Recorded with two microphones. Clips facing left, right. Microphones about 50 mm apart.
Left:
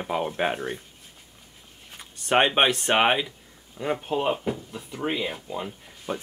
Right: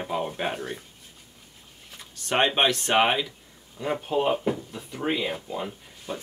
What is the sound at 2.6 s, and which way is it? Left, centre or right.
Speech, left.